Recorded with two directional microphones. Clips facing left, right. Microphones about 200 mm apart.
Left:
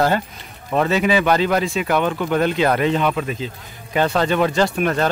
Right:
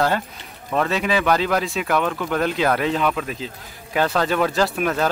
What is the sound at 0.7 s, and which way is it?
Speech, 5° left (ahead or behind).